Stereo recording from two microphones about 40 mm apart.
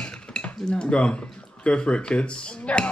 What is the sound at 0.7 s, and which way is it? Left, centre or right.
Speech, left.